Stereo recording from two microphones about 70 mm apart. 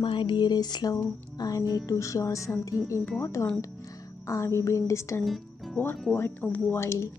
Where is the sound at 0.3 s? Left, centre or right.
Left.